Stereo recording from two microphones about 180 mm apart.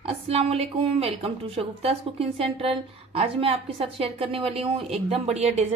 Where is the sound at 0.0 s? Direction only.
35° right (ahead or behind).